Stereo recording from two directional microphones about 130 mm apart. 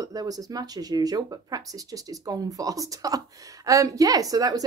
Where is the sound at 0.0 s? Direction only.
30° right (ahead or behind).